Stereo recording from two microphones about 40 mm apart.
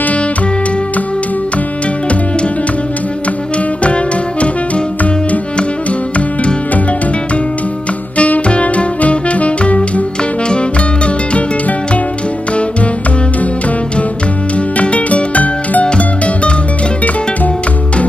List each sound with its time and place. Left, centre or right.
3.5 s music: left
6.1 s music: left
8.2 s music: left
11.3 s music: left
14.8 s music: left